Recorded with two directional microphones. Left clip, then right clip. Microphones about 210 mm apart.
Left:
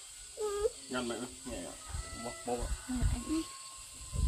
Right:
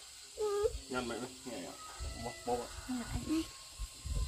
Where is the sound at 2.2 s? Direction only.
5° left (ahead or behind).